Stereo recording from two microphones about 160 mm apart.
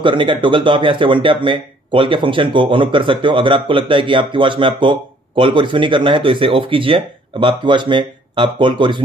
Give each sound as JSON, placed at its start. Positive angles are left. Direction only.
{"t": 0.0, "sound": "speech", "side_deg": -30}